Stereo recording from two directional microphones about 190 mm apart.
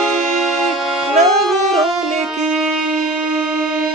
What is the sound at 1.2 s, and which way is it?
Music, 35° right (ahead or behind).